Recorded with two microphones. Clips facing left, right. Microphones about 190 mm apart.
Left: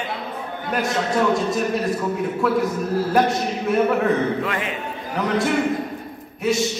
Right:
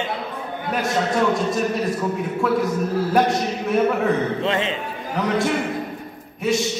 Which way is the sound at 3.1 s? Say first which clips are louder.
Even; centre (ahead or behind).